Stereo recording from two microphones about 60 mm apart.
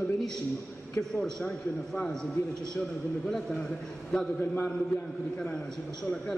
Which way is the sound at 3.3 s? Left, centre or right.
Centre.